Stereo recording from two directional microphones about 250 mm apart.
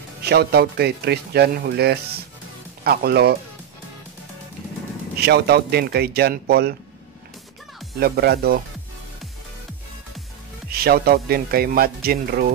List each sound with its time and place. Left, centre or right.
0.2 s speech: right
5.2 s speech: right
8.0 s speech: right
10.7 s speech: right